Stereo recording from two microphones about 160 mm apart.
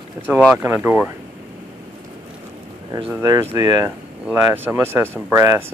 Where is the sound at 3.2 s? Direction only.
15° right (ahead or behind).